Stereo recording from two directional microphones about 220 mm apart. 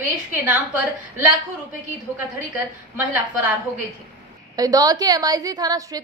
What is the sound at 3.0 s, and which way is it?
Speech, 5° right (ahead or behind).